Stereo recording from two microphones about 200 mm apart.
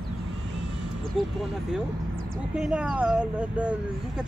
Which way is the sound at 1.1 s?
Centre (ahead or behind).